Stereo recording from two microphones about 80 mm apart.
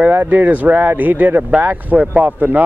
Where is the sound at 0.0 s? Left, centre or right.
Right.